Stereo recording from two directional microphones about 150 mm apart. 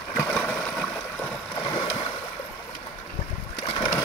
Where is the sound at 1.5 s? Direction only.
30° left (ahead or behind).